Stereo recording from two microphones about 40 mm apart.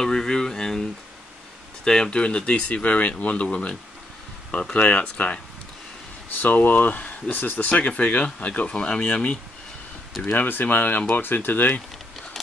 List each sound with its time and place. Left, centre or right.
0.0 s speech: centre
1.9 s speech: centre; by 5.4 s left
6.3 s speech: left
10.2 s speech: left